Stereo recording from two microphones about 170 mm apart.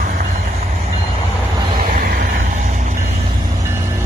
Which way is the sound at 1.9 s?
55° right (ahead or behind).